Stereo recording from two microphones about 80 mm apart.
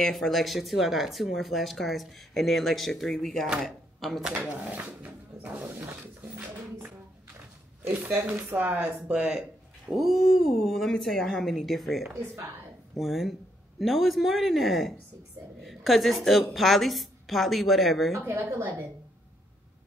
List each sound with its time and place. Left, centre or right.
0.1 s speech: centre
4.3 s speech: right
9.8 s speech: centre
18.2 s speech: right